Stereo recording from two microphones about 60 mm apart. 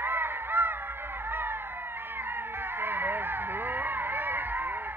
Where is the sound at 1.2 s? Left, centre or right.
Right.